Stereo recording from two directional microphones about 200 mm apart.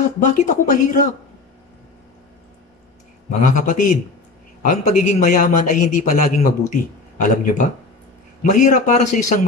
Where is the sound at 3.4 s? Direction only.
40° left (ahead or behind).